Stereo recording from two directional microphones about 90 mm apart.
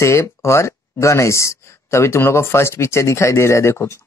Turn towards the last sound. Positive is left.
turn(degrees=30)  # may be behind; listen again after turning